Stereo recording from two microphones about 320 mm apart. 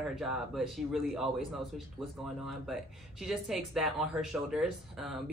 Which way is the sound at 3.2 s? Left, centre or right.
Centre.